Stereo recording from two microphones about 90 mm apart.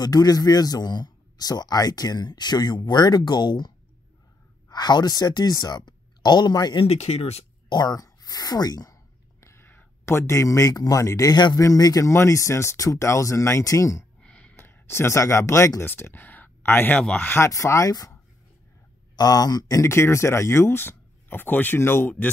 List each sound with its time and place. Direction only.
0.0 s speech: 45° left (ahead or behind)
9.4 s speech: 30° left (ahead or behind)
14.2 s a sound: 10° left (ahead or behind)
14.5 s speech: 25° left (ahead or behind)
17.0 s speech: 10° left (ahead or behind)
17.5 s speech: 35° left (ahead or behind)
19.1 s speech: 45° left (ahead or behind); by 22.3 s 20° left (ahead or behind)